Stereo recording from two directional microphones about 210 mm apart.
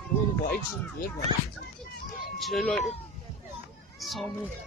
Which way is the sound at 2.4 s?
Centre (ahead or behind).